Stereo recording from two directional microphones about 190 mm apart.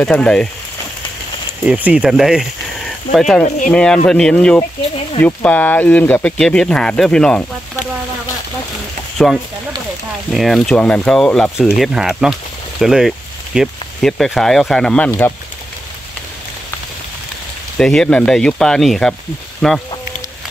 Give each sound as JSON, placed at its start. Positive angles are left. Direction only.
{"t": 0.0, "sound": "speech", "side_deg": 5}
{"t": 1.7, "sound": "speech", "side_deg": -5}
{"t": 3.4, "sound": "speech", "side_deg": 40}
{"t": 3.7, "sound": "speech", "side_deg": 5}
{"t": 9.2, "sound": "speech", "side_deg": 0}
{"t": 17.7, "sound": "speech", "side_deg": 5}